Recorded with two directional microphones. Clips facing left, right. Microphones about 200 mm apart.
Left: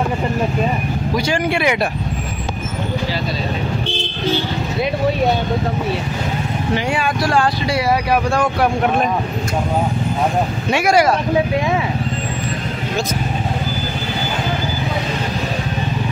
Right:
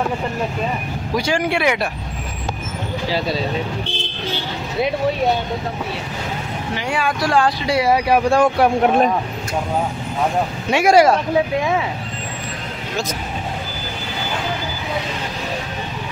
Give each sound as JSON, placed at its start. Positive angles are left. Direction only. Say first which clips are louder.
{"t": 1.1, "sound": "vehicle", "louder": "even", "side_deg": -10}
{"t": 7.2, "sound": "speech", "louder": "right 1 dB", "side_deg": -20}
{"t": 10.8, "sound": "speech", "louder": "right 3 dB", "side_deg": -25}